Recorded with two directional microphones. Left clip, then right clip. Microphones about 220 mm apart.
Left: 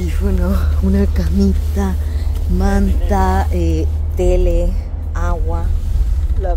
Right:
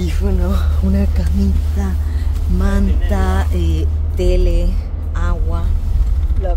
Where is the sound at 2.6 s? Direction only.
15° left (ahead or behind).